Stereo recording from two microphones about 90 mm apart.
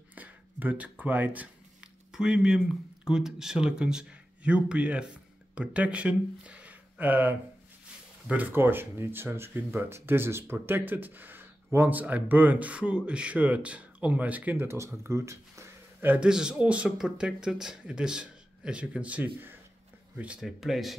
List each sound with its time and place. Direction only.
0.1 s a sound: 15° right (ahead or behind)
2.1 s speech: 10° right (ahead or behind)
14.7 s speech: 30° right (ahead or behind)
16.2 s speech: 10° right (ahead or behind)
20.3 s speech: 5° right (ahead or behind)